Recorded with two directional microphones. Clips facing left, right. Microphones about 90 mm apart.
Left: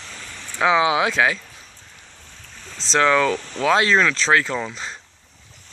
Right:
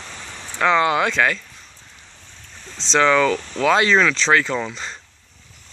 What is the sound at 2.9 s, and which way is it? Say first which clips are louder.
Speech: right 1 dB; 5° left (ahead or behind).